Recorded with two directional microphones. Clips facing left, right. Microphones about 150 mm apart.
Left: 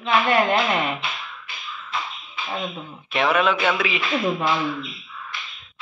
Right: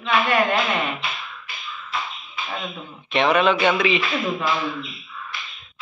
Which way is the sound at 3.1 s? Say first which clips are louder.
Right 2 dB; 5° left (ahead or behind).